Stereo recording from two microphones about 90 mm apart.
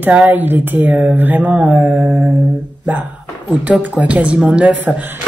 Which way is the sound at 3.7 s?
15° right (ahead or behind).